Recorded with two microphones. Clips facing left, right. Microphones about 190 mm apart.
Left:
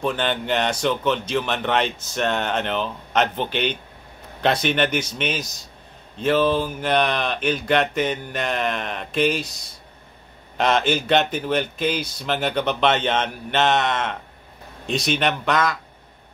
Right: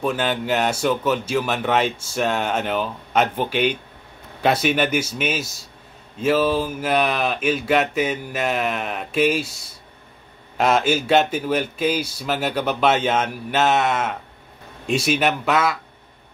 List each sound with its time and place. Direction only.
0.0 s speech: 5° right (ahead or behind)
10.6 s speech: 5° right (ahead or behind)